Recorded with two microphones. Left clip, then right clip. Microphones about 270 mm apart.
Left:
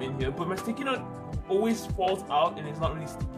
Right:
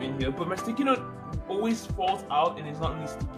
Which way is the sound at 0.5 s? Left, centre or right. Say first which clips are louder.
Right 4 dB; centre.